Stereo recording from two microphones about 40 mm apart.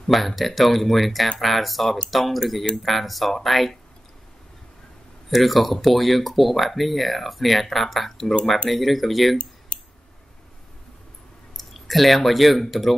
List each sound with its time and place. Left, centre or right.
0.4 s speech: centre
5.3 s speech: centre
11.5 s speech: centre